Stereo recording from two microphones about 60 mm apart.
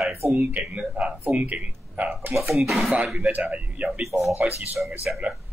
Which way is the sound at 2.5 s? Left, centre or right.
Centre.